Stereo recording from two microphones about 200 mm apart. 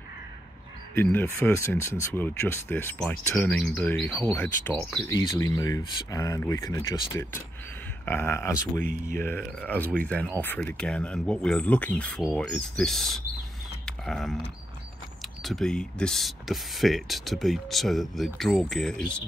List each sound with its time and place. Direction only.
0.9 s speech: 10° left (ahead or behind)
13.8 s a sound: centre (ahead or behind)
15.2 s speech: centre (ahead or behind)